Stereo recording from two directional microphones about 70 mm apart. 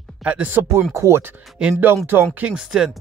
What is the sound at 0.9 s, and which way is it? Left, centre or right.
Speech, right.